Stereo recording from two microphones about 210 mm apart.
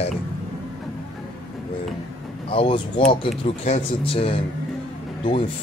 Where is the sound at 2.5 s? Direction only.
25° left (ahead or behind).